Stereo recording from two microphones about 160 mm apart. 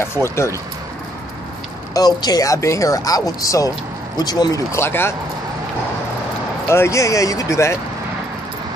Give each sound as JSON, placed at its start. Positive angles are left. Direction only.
{"t": 0.0, "sound": "speech", "side_deg": 15}
{"t": 2.0, "sound": "speech", "side_deg": 25}
{"t": 6.7, "sound": "speech", "side_deg": 15}